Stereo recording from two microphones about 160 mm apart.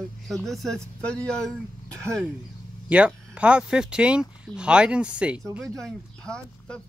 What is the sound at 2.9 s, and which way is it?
A man's voice, 10° right (ahead or behind).